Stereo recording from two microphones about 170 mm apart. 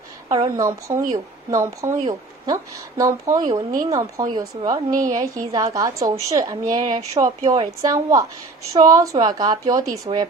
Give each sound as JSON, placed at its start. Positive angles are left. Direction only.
{"t": 0.3, "sound": "a woman's voice", "side_deg": -20}